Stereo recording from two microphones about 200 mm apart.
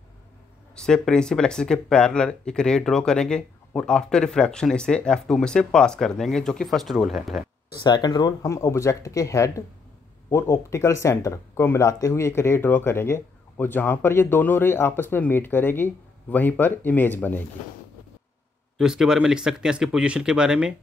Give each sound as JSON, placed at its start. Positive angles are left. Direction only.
{"t": 0.7, "sound": "speech", "side_deg": 5}
{"t": 7.8, "sound": "speech", "side_deg": 20}
{"t": 18.8, "sound": "speech", "side_deg": -5}